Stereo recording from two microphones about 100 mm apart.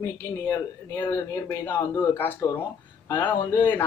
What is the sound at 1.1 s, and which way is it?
A woman's voice, 25° left (ahead or behind).